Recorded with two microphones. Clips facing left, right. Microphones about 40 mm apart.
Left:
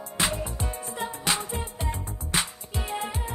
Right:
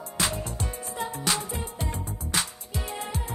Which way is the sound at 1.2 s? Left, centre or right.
Left.